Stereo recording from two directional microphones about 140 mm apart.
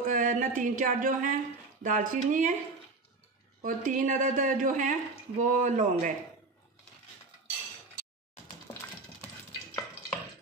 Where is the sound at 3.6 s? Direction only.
70° right (ahead or behind).